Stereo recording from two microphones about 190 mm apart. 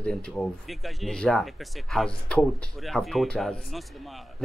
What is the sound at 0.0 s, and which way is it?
Speech, 5° left (ahead or behind).